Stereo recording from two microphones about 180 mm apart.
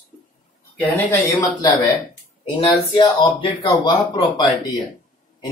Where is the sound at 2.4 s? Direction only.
30° left (ahead or behind).